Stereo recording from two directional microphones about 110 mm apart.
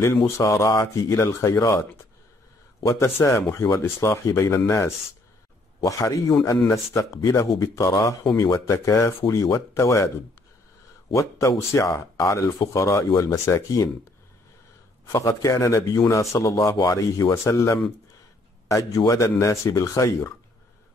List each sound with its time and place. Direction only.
0.2 s speech: 30° left (ahead or behind)
15.0 s speech: 30° left (ahead or behind)